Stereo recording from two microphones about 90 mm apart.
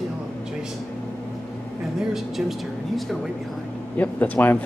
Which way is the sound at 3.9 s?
15° left (ahead or behind).